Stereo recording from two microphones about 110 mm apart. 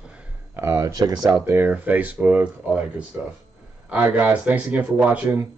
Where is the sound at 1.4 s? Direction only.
20° right (ahead or behind).